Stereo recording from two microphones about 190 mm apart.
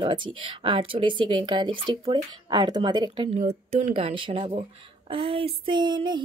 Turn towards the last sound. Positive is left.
turn(degrees=-25)  # may be behind; listen again after turning